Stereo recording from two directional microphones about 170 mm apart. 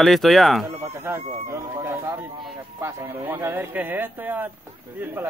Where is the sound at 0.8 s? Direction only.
15° right (ahead or behind).